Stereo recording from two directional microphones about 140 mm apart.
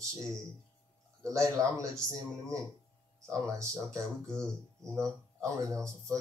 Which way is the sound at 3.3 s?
20° right (ahead or behind).